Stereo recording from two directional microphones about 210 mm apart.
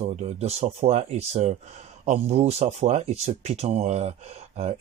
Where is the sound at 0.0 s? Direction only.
30° right (ahead or behind).